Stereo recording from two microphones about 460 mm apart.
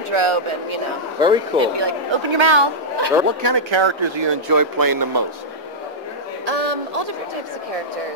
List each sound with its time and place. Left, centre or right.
0.1 s speech: right
1.2 s speech: centre
1.6 s speech: right
4.5 s speech: right